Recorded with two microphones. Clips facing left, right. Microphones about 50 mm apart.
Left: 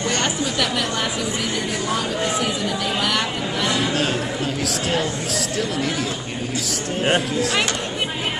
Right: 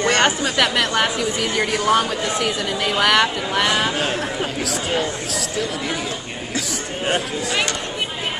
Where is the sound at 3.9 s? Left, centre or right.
Centre.